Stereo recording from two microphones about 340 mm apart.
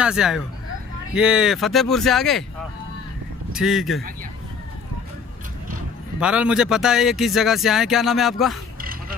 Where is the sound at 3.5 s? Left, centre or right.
Centre.